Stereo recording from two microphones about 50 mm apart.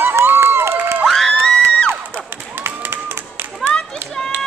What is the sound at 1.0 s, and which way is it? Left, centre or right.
Crowd, centre.